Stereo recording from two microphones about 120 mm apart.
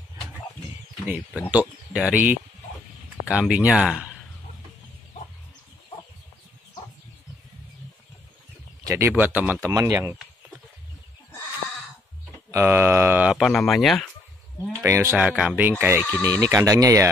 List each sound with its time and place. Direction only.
1.0 s speech: 15° right (ahead or behind)
8.8 s speech: 25° right (ahead or behind)
9.7 s speech: 30° right (ahead or behind)
12.4 s a sound: 20° right (ahead or behind)
13.3 s speech: centre (ahead or behind)
14.9 s speech: 20° right (ahead or behind)
15.1 s speech: 10° right (ahead or behind)
16.1 s speech: 20° left (ahead or behind)
16.3 s speech: 25° right (ahead or behind)